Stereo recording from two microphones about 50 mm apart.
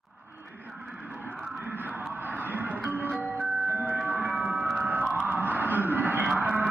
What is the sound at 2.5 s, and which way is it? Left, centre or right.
Music, right.